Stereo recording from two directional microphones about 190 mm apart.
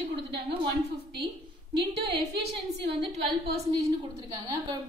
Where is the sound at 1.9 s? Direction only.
60° right (ahead or behind).